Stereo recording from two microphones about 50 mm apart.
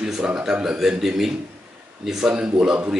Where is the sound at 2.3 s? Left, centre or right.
Centre.